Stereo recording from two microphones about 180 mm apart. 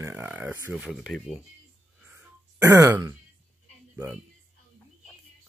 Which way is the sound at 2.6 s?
15° right (ahead or behind).